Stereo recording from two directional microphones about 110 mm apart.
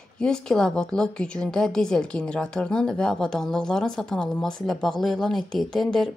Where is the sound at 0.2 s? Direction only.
5° left (ahead or behind).